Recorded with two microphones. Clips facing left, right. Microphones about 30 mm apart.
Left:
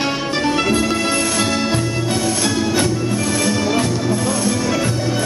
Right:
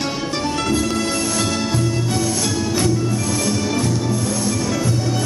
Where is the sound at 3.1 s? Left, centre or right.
Left.